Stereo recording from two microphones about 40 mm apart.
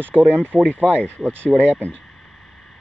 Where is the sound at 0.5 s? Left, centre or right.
Centre.